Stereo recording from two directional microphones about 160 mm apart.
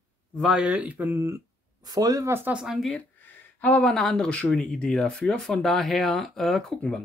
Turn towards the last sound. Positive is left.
turn(degrees=5)  # may be behind; listen again after turning